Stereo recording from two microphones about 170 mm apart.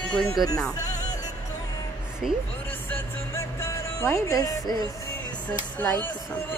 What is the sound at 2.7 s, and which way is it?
Speech, 10° left (ahead or behind).